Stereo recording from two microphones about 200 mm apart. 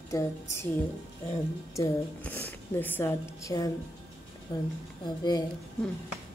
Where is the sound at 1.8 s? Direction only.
15° left (ahead or behind).